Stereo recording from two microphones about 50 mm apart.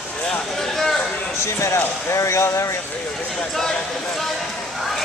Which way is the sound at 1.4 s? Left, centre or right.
Left.